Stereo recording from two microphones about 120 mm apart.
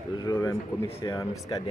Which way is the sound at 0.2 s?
30° left (ahead or behind).